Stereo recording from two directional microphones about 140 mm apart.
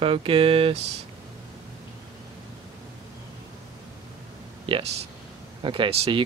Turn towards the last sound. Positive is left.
turn(degrees=-40)  # may be behind; listen again after turning